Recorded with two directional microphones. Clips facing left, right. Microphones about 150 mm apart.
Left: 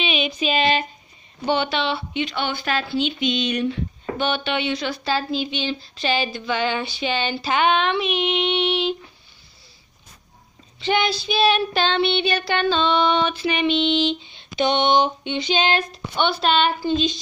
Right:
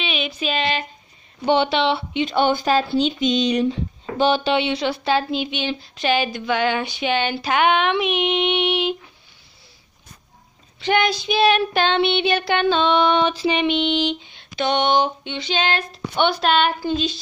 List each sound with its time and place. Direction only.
0.0 s a sound: centre (ahead or behind)
1.4 s speech: 25° right (ahead or behind)
2.2 s speech: 45° right (ahead or behind); by 8.9 s 15° right (ahead or behind)
10.9 s speech: 15° right (ahead or behind)
13.7 s speech: 15° right (ahead or behind)
14.6 s a sound: 5° right (ahead or behind)
16.2 s speech: 10° right (ahead or behind)